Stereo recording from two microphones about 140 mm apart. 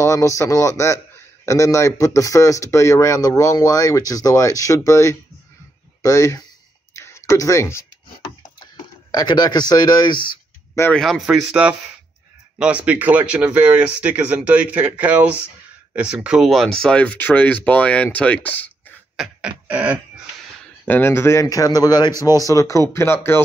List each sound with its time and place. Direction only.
0.0 s a man's voice: 20° left (ahead or behind)
7.0 s a sound: 20° left (ahead or behind)
9.1 s a man's voice: 30° left (ahead or behind)
10.7 s speech: 15° left (ahead or behind)
11.0 s speech: centre (ahead or behind)
19.1 s beatboxing: 10° right (ahead or behind)
20.8 s a man's voice: 15° left (ahead or behind)